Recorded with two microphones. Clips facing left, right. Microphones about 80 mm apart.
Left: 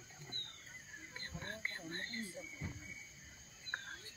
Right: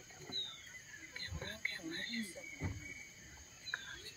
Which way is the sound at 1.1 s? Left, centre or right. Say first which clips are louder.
Left 1 dB; left.